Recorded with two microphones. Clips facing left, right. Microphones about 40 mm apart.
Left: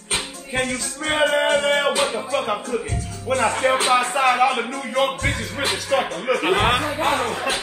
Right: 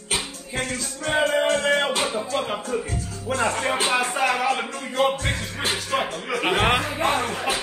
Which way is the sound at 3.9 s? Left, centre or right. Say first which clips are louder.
Left 4 dB; left.